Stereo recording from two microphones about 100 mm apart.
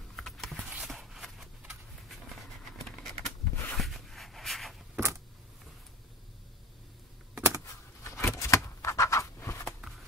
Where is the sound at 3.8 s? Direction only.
Centre (ahead or behind).